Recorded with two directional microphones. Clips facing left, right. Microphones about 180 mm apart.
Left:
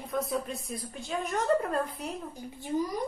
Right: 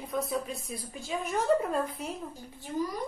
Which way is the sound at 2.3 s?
20° left (ahead or behind).